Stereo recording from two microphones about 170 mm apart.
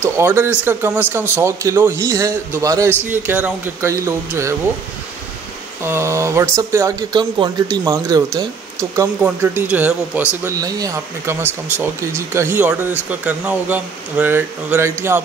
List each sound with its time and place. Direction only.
0.0 s a man's voice: 15° right (ahead or behind)
5.9 s a man's voice: 15° right (ahead or behind)
10.4 s a man's voice: 20° right (ahead or behind)